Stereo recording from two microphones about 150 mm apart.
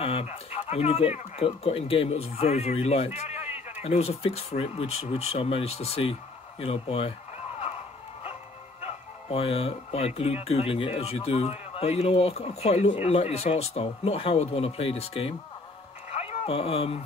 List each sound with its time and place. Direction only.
0.0 s speech: 40° left (ahead or behind)
3.3 s bleat: 10° right (ahead or behind)
3.8 s speech: 45° left (ahead or behind)
8.8 s speech: 40° left (ahead or behind)
16.1 s a sound: 40° left (ahead or behind)